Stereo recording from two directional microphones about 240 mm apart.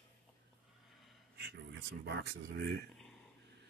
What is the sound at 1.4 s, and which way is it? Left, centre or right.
Speech, right.